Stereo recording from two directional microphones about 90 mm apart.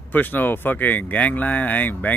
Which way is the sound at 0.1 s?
20° left (ahead or behind).